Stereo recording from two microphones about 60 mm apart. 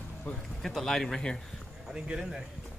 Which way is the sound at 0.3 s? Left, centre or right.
Left.